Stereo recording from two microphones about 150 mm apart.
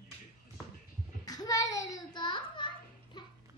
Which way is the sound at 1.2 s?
25° left (ahead or behind).